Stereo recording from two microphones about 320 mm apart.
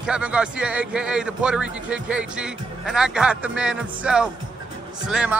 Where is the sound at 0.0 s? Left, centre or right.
Centre.